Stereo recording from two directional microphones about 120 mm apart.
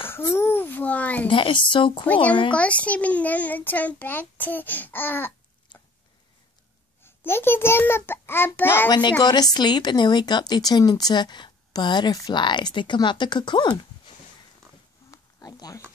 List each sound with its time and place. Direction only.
0.0 s a sound: 20° left (ahead or behind)
1.3 s a woman's voice: 45° left (ahead or behind)
2.5 s a child's voice: 10° left (ahead or behind)
7.0 s a child's voice: 20° left (ahead or behind)
8.8 s speech: 35° left (ahead or behind)
15.0 s a sound: 30° left (ahead or behind)